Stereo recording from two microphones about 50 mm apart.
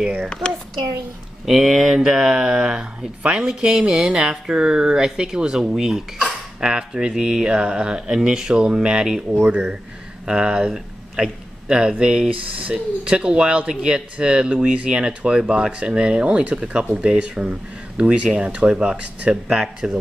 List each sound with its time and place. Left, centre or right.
0.0 s speech: centre
1.4 s speech: centre
12.4 s speech: right
12.7 s speech: centre